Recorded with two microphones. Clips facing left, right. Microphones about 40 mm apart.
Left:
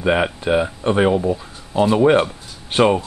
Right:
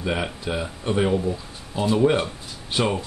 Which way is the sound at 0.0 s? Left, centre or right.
Left.